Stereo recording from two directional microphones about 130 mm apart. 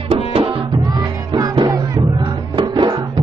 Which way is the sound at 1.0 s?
30° right (ahead or behind).